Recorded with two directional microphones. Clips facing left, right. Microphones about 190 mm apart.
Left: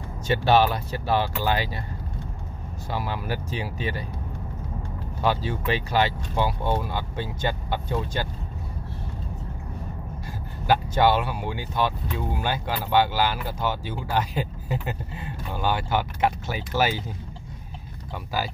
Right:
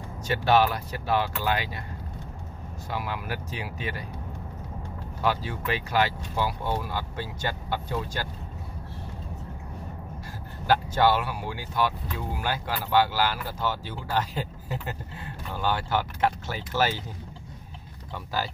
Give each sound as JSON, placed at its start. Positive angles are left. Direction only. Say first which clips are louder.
{"t": 0.3, "sound": "speech", "louder": "left 2 dB", "side_deg": 30}
{"t": 2.9, "sound": "speech", "louder": "left 3 dB", "side_deg": 30}
{"t": 5.2, "sound": "speech", "louder": "left 3 dB", "side_deg": 25}
{"t": 10.7, "sound": "speech", "louder": "left 2 dB", "side_deg": 20}
{"t": 18.1, "sound": "speech", "louder": "left 2 dB", "side_deg": 10}